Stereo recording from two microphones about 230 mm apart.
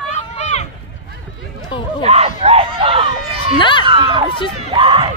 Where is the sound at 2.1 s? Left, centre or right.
Right.